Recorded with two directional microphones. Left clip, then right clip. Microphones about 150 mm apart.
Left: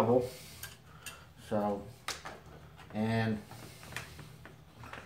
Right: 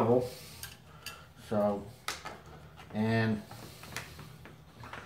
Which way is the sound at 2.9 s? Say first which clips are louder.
Right 2 dB; 20° right (ahead or behind).